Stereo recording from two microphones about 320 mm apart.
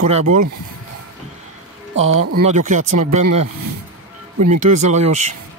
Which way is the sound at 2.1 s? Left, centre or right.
Right.